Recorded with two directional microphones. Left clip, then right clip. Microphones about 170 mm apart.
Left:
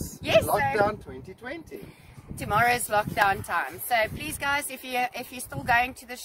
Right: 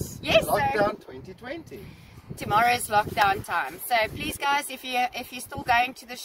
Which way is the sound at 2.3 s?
20° left (ahead or behind).